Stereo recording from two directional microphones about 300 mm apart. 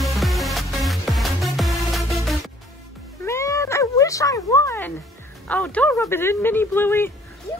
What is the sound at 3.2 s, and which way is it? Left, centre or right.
Cat, centre.